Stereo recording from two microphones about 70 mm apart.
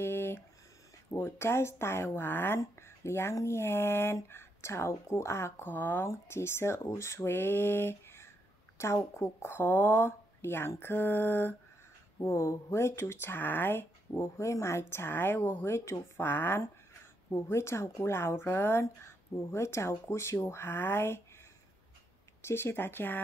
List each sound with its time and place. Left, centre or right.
0.0 s a sound: left
1.1 s speech: left
22.4 s speech: left